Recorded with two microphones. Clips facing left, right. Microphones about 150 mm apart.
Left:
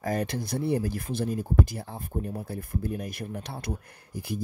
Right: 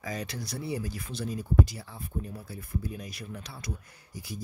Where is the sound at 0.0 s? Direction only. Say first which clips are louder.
Left 7 dB; 55° left (ahead or behind).